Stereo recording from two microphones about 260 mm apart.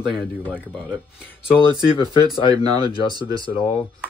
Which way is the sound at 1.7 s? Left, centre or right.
Centre.